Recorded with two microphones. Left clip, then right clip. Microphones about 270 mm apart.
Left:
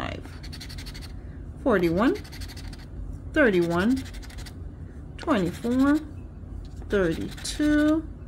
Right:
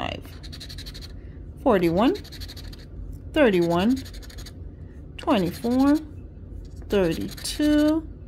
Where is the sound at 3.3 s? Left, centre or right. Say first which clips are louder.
Right 2 dB; centre.